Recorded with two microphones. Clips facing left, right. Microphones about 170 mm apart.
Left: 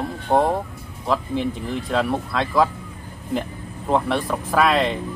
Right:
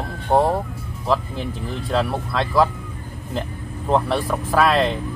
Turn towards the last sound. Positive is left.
turn(degrees=0)  # may be behind; listen again after turning